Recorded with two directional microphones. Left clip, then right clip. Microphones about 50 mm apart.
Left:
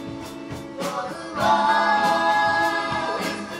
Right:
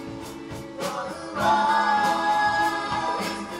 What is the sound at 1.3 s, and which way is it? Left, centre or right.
Music, centre.